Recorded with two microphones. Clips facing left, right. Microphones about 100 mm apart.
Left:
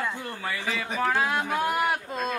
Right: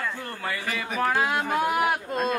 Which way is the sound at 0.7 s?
5° right (ahead or behind).